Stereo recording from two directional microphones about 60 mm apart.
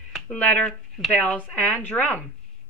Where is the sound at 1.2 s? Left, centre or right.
Left.